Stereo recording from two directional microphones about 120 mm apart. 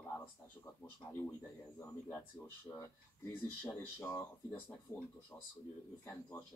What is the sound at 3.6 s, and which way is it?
Speech, 25° left (ahead or behind).